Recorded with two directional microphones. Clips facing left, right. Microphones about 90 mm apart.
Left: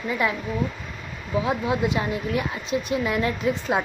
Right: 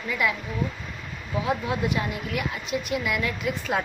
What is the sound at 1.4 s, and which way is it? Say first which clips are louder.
Speech: left 1 dB; 25° left (ahead or behind).